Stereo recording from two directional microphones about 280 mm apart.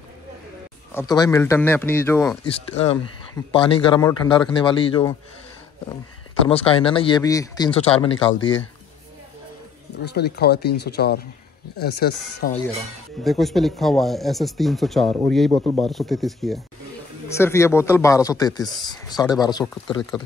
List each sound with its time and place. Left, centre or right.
0.9 s speech: centre
2.4 s speech: left
6.5 s speech: centre
10.0 s speech: left
13.2 s speech: centre